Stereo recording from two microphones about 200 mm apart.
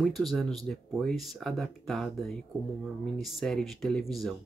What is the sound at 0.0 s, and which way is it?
Speech, centre (ahead or behind).